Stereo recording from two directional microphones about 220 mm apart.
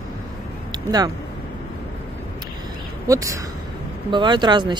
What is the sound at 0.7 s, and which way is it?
Speech, 15° right (ahead or behind).